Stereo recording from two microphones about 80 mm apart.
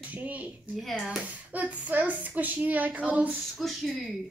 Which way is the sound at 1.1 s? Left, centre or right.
Centre.